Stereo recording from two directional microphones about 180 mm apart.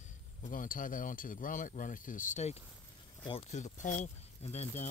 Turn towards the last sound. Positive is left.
turn(degrees=35)  # may be behind; listen again after turning